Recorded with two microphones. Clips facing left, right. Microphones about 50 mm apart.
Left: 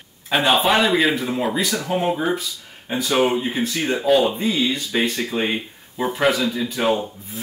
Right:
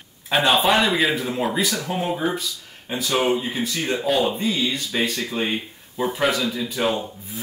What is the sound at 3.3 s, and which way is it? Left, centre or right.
Speech, left.